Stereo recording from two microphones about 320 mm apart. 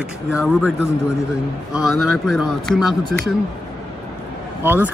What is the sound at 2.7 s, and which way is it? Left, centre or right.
Speech, centre.